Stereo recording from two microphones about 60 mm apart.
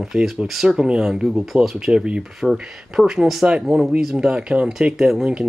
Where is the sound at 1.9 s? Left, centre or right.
Centre.